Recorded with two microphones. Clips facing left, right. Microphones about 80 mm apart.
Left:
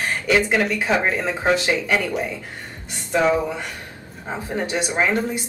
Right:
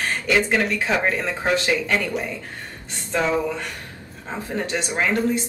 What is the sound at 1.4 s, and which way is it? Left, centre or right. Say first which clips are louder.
Speech: left 2 dB; centre.